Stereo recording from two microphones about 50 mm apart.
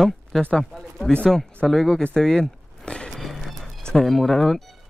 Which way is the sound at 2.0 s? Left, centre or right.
Centre.